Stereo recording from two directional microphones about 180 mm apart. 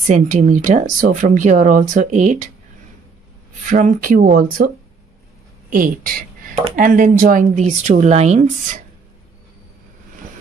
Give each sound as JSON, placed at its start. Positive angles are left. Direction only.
{"t": 0.0, "sound": "speech", "side_deg": -45}
{"t": 3.6, "sound": "speech", "side_deg": -45}
{"t": 5.7, "sound": "speech", "side_deg": -50}